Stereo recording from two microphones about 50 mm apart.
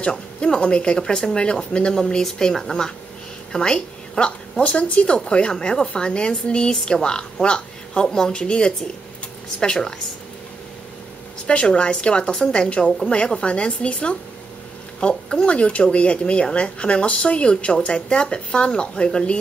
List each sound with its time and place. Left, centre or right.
0.0 s a woman's voice: centre
11.4 s a woman's voice: left